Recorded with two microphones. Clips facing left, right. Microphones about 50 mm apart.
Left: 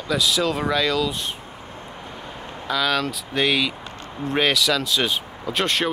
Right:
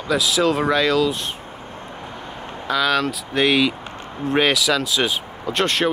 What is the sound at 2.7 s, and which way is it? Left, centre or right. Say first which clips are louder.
Speech: right 3 dB; centre.